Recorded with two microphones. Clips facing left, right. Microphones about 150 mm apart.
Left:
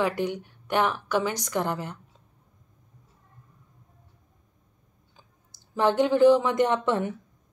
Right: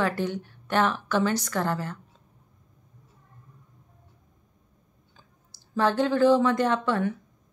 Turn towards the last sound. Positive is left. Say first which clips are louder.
# even
turn(degrees=20)  # may be behind; listen again after turning